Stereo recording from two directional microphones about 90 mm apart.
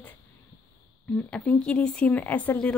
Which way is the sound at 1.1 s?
15° left (ahead or behind).